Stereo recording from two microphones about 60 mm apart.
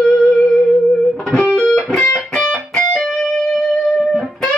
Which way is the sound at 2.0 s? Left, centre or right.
Left.